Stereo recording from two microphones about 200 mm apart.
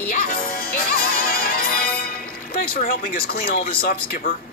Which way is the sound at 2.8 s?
45° left (ahead or behind).